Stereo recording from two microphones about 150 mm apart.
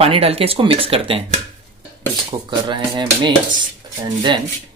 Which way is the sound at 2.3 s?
30° right (ahead or behind).